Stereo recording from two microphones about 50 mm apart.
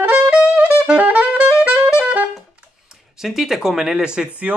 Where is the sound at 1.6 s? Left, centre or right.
Right.